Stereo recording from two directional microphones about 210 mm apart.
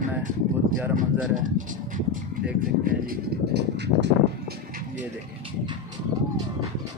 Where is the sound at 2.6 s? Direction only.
45° right (ahead or behind).